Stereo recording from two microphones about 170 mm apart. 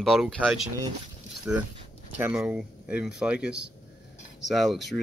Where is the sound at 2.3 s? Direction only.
5° right (ahead or behind).